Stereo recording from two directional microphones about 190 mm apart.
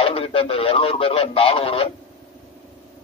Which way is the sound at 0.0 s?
30° left (ahead or behind).